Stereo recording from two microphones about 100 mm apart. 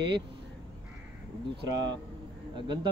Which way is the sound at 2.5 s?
50° right (ahead or behind).